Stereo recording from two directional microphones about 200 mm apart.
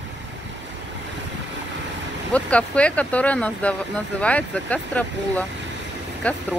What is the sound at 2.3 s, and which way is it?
Speech, 5° left (ahead or behind).